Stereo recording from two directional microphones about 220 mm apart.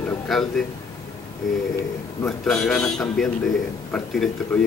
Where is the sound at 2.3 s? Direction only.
5° left (ahead or behind).